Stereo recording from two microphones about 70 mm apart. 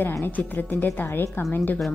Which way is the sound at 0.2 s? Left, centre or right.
Left.